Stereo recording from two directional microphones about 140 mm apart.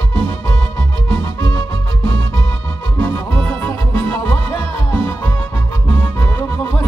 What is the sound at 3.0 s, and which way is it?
Music, 15° left (ahead or behind).